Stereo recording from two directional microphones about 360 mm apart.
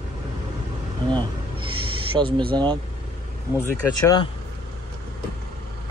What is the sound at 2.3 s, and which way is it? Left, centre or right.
Speech, centre.